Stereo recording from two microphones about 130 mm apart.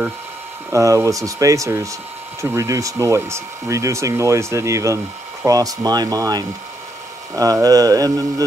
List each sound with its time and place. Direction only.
0.7 s speech: 25° right (ahead or behind)
7.6 s speech: 30° right (ahead or behind)